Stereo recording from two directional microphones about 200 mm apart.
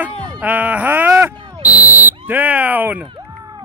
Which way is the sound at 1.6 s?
10° right (ahead or behind).